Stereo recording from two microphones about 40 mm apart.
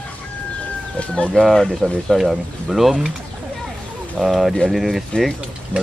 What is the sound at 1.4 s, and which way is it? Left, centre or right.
Speech, left.